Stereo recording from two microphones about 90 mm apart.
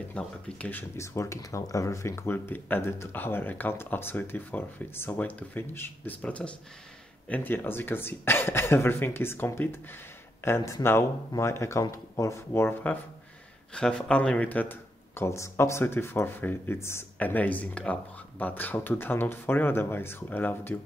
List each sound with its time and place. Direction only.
0.2 s speech: 15° left (ahead or behind)
0.7 s speech: 25° left (ahead or behind)
13.7 s speech: 10° left (ahead or behind); by 17.0 s 30° left (ahead or behind)
17.2 s speech: 15° left (ahead or behind)